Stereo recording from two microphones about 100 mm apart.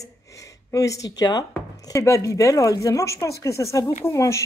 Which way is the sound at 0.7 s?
35° left (ahead or behind).